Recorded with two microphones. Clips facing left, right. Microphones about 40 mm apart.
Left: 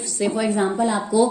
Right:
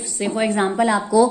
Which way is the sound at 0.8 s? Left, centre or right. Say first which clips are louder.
Right 5 dB; right.